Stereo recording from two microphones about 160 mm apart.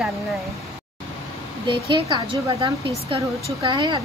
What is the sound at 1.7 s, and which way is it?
Speech, 30° right (ahead or behind).